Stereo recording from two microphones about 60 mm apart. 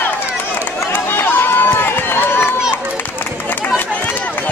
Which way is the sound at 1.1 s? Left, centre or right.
Left.